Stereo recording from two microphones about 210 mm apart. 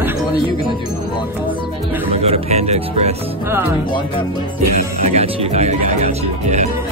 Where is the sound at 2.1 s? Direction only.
30° right (ahead or behind).